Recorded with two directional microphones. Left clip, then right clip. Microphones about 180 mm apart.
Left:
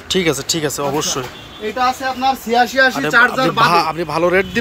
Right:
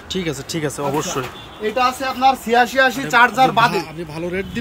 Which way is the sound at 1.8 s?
30° right (ahead or behind).